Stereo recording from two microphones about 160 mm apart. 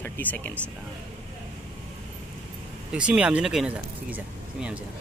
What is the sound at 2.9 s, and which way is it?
Speech, 5° right (ahead or behind).